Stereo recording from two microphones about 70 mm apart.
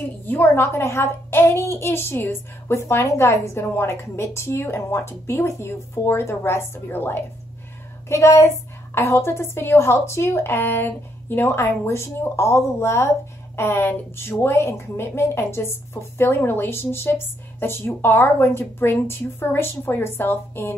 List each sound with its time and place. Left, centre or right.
0.3 s speech: left
8.1 s speech: left